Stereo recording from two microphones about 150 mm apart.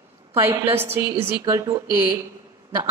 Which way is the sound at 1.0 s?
30° right (ahead or behind).